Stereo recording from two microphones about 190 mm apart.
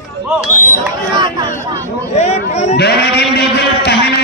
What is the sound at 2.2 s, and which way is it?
Speech, 35° left (ahead or behind).